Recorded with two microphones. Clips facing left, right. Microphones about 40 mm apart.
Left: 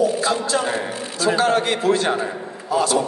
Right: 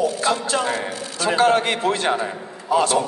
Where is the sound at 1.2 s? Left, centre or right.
Right.